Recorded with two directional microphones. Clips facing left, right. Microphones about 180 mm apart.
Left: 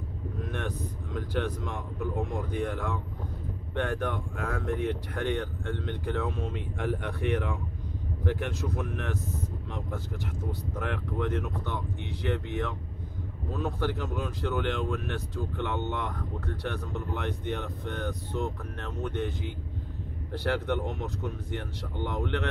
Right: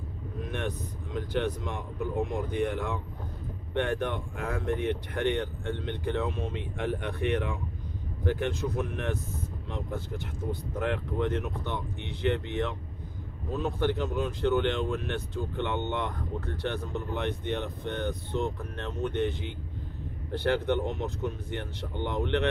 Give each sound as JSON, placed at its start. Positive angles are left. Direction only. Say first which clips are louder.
{"t": 0.5, "sound": "speech", "louder": "right 2 dB", "side_deg": -20}